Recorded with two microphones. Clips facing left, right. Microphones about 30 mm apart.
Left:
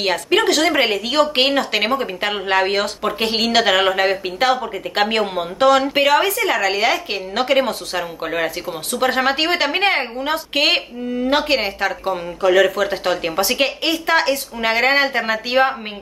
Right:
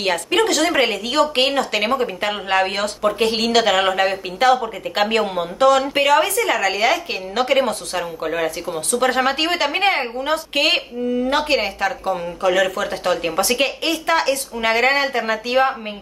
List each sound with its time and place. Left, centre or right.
0.6 s a woman's voice: centre
5.6 s a woman's voice: left
5.9 s a woman's voice: centre